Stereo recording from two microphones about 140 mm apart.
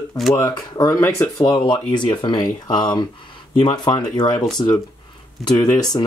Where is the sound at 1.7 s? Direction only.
35° left (ahead or behind).